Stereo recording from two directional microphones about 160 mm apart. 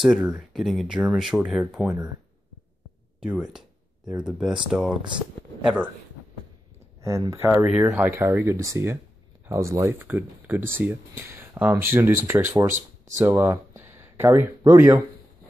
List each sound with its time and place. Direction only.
0.0 s speech: centre (ahead or behind)
3.2 s speech: 5° right (ahead or behind)
7.0 s speech: 20° right (ahead or behind)